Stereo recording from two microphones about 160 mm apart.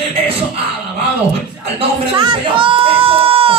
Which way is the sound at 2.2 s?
30° right (ahead or behind).